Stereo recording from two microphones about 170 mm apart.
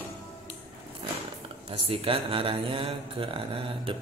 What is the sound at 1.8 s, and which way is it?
Speech, 35° right (ahead or behind).